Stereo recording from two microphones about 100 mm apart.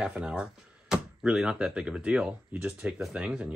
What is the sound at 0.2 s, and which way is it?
Speech, 10° right (ahead or behind).